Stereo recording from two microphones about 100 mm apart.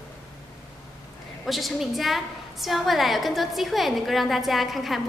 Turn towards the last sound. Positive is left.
turn(degrees=0)  # may be behind; listen again after turning